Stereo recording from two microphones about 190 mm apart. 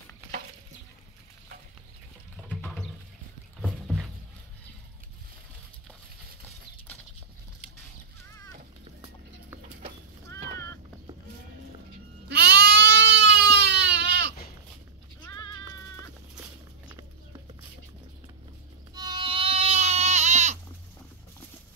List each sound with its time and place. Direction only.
3.6 s a sound: centre (ahead or behind)
12.3 s goat: 60° right (ahead or behind)
18.9 s goat: 25° right (ahead or behind)